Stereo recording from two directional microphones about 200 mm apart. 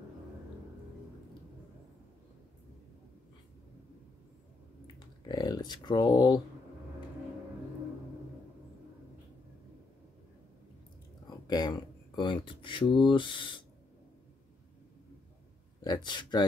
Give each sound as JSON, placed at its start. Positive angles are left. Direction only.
{"t": 4.9, "sound": "speech", "side_deg": 20}
{"t": 11.2, "sound": "speech", "side_deg": 20}
{"t": 15.8, "sound": "speech", "side_deg": 20}